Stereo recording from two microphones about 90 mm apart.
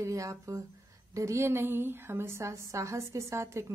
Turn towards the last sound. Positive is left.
turn(degrees=-30)  # may be behind; listen again after turning